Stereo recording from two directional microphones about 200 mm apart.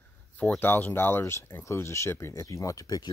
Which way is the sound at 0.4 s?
10° left (ahead or behind).